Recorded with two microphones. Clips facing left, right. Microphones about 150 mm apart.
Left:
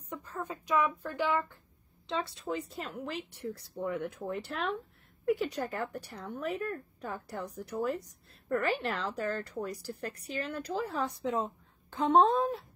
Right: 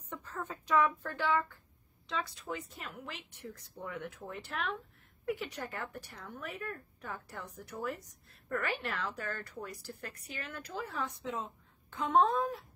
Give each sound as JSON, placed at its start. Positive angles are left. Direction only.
{"t": 0.1, "sound": "speech", "side_deg": 10}
{"t": 2.0, "sound": "a woman's voice", "side_deg": 25}